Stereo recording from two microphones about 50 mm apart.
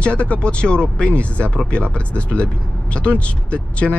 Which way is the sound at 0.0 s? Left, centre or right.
Left.